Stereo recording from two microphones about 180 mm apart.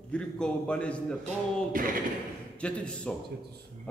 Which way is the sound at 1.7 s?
50° right (ahead or behind).